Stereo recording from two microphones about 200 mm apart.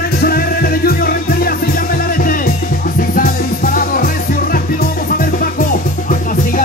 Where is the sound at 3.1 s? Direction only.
45° left (ahead or behind).